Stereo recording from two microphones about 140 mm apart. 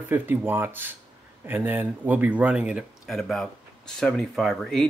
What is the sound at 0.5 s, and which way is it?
Speech, 15° right (ahead or behind).